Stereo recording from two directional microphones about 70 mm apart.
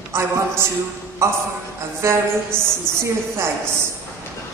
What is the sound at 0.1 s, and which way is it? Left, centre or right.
A woman's voice, right.